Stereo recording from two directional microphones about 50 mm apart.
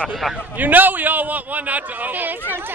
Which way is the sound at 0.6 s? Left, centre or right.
Right.